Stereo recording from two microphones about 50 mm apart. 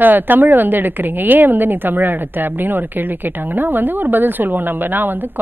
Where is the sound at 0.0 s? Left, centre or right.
Right.